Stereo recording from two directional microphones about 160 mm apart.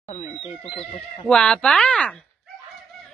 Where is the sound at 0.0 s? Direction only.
40° left (ahead or behind).